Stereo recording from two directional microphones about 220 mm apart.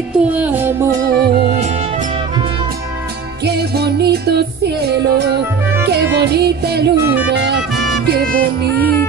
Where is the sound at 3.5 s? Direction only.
45° right (ahead or behind).